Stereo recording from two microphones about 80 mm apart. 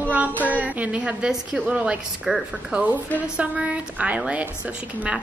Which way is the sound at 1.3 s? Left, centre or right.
Centre.